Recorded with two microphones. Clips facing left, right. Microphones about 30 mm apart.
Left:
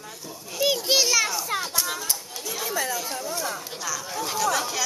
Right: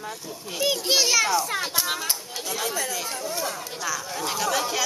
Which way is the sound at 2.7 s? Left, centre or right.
Centre.